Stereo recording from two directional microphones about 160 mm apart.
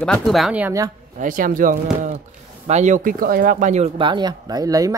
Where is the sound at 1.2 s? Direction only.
55° right (ahead or behind).